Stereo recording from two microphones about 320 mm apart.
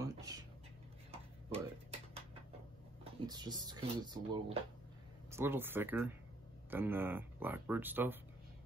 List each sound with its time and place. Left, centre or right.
0.0 s a sound: centre
3.0 s speech: centre
5.3 s speech: centre